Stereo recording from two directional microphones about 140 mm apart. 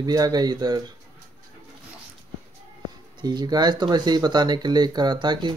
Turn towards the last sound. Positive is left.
turn(degrees=-35)  # may be behind; listen again after turning